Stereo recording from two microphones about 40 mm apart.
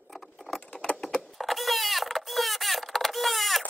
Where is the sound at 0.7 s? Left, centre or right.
Left.